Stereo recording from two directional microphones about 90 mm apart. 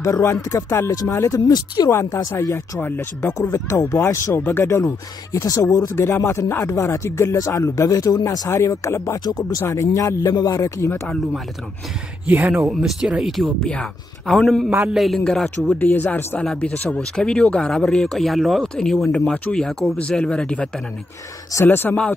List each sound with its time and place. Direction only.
0.0 s speech: 35° left (ahead or behind)
1.5 s speech: 45° left (ahead or behind)
2.0 s speech: 30° left (ahead or behind)
4.4 s speech: 20° left (ahead or behind)
5.3 s speech: 40° left (ahead or behind)
12.3 s speech: 20° right (ahead or behind)
12.6 s speech: 5° right (ahead or behind)
13.7 s speech: 10° left (ahead or behind)
15.8 s speech: 20° left (ahead or behind)
21.6 s speech: 20° left (ahead or behind)